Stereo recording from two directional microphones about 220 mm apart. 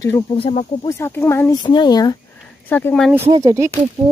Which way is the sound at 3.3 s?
15° right (ahead or behind).